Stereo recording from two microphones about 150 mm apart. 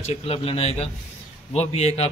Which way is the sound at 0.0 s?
40° left (ahead or behind).